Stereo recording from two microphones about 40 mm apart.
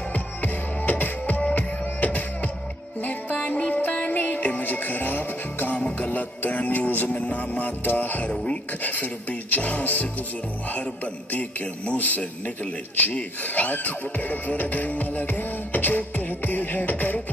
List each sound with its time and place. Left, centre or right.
0.1 s music: left
4.0 s music: left
7.1 s speech: left
11.3 s speech: left